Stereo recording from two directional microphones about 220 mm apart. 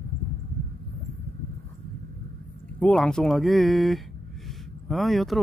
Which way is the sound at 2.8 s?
5° left (ahead or behind).